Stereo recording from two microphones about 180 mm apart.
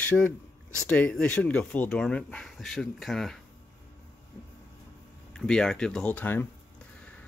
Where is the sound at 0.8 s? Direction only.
10° left (ahead or behind).